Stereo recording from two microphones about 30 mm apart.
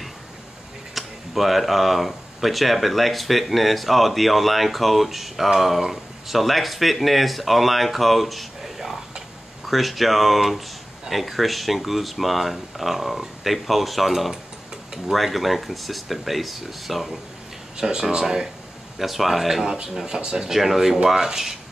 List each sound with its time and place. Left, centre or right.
0.9 s speech: centre
17.7 s speech: right
18.9 s speech: centre
19.6 s speech: right